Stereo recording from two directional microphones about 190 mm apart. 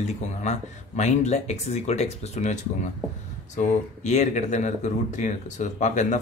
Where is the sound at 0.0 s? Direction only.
40° left (ahead or behind).